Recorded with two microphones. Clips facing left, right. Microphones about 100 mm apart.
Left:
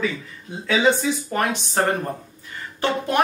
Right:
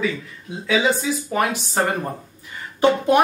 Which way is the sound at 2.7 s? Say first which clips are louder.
Right 5 dB; 15° right (ahead or behind).